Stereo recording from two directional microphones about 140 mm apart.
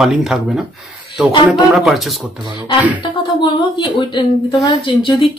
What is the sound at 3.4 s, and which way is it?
A woman's voice, 35° left (ahead or behind).